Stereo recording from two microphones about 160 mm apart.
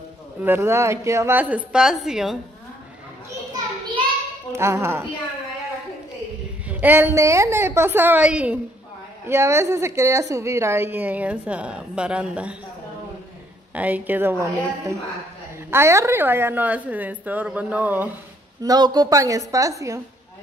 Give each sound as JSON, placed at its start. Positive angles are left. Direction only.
{"t": 0.4, "sound": "a woman's voice", "side_deg": -15}
{"t": 4.5, "sound": "a woman's voice", "side_deg": -15}
{"t": 6.7, "sound": "a woman's voice", "side_deg": -10}
{"t": 13.7, "sound": "a woman's voice", "side_deg": -10}
{"t": 18.6, "sound": "a woman's voice", "side_deg": -25}